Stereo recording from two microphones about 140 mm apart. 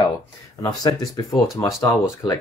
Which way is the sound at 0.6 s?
25° left (ahead or behind).